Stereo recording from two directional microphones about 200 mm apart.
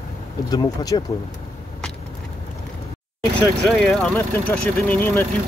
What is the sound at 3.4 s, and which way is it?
Speech, 5° left (ahead or behind).